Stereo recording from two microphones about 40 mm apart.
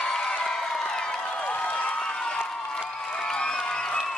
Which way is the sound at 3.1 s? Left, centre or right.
Centre.